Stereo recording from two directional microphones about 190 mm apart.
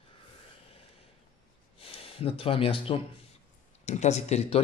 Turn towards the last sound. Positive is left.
turn(degrees=35)  # may be behind; listen again after turning